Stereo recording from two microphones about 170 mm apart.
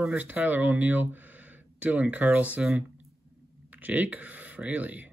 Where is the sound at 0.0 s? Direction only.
10° right (ahead or behind).